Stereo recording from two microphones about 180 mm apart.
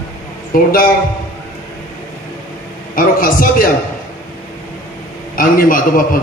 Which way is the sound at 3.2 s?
50° left (ahead or behind).